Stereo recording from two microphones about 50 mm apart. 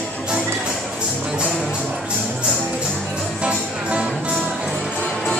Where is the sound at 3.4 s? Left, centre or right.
Right.